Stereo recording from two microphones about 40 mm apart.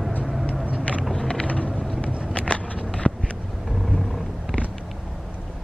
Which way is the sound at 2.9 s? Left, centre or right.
Left.